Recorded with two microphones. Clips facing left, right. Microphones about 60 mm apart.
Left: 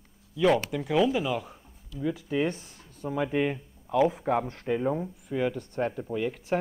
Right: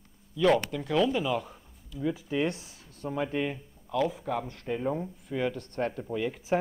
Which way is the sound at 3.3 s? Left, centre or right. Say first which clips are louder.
Left 4 dB; centre.